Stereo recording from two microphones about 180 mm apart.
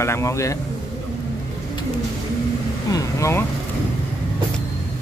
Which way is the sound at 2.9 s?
20° left (ahead or behind).